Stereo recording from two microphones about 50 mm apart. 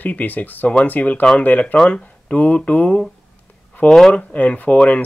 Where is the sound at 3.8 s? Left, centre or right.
Left.